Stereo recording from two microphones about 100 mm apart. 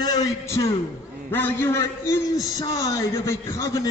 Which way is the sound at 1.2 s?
20° left (ahead or behind).